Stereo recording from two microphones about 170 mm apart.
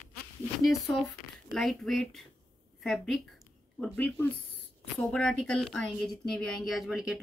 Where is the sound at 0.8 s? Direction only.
Centre (ahead or behind).